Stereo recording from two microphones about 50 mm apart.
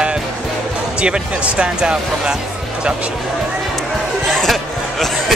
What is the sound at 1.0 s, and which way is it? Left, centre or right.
Speech, centre.